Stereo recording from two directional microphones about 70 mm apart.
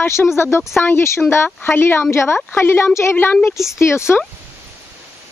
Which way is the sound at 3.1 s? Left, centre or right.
Left.